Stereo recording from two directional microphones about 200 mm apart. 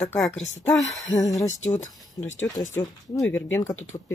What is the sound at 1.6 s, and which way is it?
Speech, 35° left (ahead or behind).